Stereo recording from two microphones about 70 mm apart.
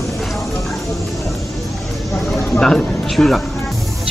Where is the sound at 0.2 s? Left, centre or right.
Centre.